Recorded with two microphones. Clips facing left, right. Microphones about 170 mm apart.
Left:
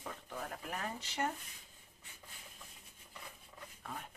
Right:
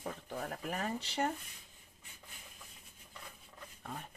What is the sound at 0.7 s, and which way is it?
Speech, 35° right (ahead or behind).